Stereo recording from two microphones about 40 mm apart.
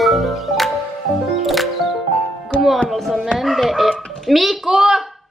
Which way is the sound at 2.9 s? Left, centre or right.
Centre.